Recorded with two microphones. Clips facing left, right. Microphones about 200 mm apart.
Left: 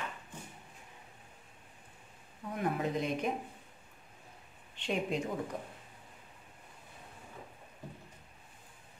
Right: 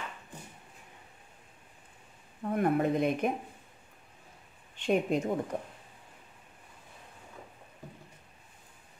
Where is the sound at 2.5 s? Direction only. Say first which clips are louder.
Right 6 dB; 55° right (ahead or behind).